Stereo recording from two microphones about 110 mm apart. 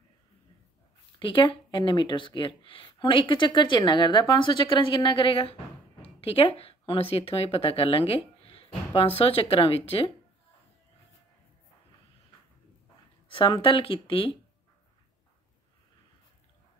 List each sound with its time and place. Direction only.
1.2 s speech: 50° left (ahead or behind)
13.6 s speech: 55° left (ahead or behind)